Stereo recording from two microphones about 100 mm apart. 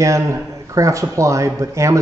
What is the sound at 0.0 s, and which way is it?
A man's voice, 30° right (ahead or behind).